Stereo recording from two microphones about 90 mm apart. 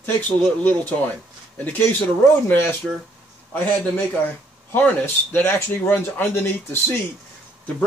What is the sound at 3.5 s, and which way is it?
A man's voice, 15° left (ahead or behind).